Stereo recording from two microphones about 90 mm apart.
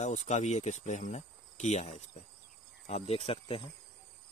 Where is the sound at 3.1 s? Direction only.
90° left.